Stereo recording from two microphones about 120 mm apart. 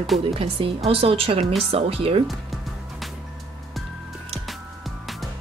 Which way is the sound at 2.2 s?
Centre (ahead or behind).